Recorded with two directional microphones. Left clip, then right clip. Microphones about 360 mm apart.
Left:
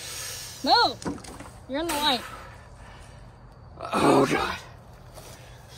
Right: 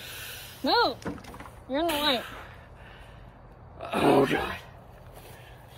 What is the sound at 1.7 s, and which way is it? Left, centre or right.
Speech, centre.